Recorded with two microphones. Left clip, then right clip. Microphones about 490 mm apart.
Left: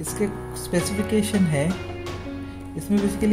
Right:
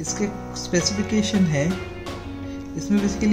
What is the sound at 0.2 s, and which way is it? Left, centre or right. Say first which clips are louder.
Speech: left 1 dB; centre.